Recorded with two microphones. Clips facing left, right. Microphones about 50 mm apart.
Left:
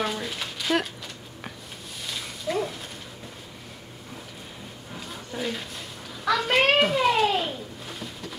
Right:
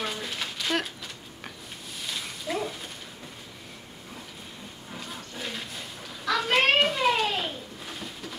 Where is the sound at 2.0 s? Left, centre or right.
Centre.